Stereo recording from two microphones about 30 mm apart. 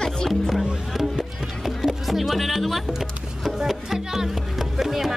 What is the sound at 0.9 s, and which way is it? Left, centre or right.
Music, centre.